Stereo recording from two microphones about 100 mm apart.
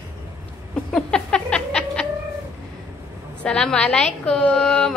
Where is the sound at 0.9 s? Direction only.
10° left (ahead or behind).